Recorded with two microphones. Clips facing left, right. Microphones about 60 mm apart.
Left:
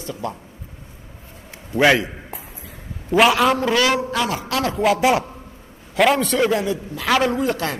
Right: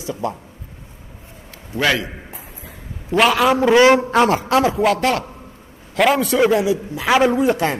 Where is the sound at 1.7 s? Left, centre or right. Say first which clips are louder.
Left 3 dB; left.